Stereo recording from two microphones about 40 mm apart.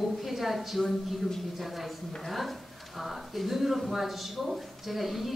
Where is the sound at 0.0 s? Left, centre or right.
Centre.